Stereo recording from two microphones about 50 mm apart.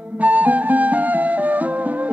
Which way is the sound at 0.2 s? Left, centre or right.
Right.